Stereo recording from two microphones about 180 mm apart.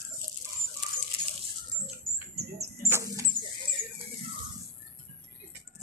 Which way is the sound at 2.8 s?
15° right (ahead or behind).